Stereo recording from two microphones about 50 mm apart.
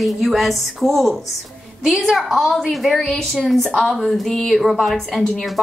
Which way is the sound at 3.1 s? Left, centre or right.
Centre.